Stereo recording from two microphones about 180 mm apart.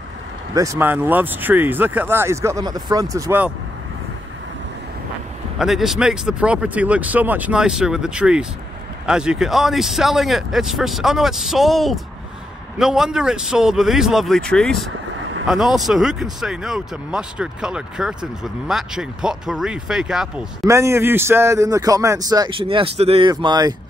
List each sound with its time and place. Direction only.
0.6 s speech: 15° right (ahead or behind)
5.6 s speech: centre (ahead or behind)
20.6 s a man's voice: 15° right (ahead or behind)